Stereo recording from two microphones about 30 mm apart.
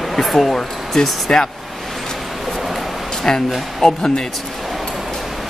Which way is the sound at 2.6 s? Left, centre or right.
Centre.